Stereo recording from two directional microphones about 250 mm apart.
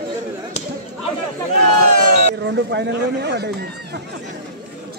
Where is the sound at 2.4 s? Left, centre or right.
Right.